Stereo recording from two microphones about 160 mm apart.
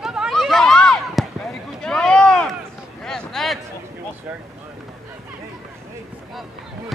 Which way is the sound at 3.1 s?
5° left (ahead or behind).